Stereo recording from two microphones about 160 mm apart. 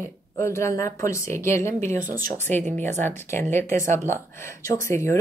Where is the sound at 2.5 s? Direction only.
50° right (ahead or behind).